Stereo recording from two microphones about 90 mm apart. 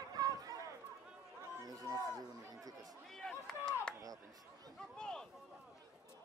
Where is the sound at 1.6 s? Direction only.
45° right (ahead or behind).